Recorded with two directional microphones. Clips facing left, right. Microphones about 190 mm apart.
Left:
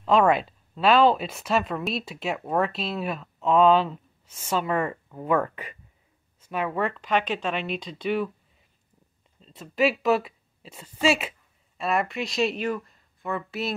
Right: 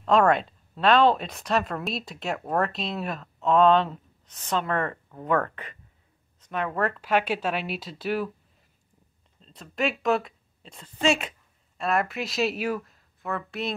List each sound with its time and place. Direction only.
0.0 s speech: 5° left (ahead or behind)
9.4 s a woman's voice: 5° left (ahead or behind)